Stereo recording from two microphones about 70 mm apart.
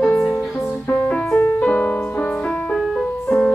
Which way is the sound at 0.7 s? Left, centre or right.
Left.